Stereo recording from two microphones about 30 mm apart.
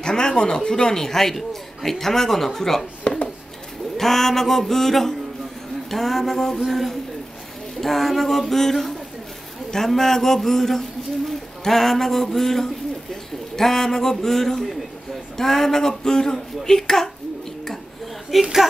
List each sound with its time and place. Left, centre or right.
0.0 s speech: left
3.9 s speech: centre
9.7 s a sound: centre
13.6 s speech: centre
18.4 s a woman's voice: centre